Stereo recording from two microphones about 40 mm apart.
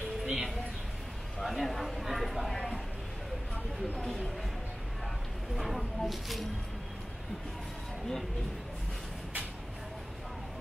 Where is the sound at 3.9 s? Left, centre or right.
Centre.